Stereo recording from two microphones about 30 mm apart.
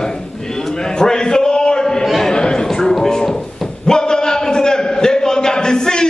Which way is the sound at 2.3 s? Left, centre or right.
Left.